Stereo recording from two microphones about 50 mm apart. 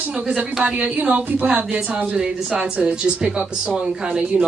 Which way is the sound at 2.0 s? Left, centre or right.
Centre.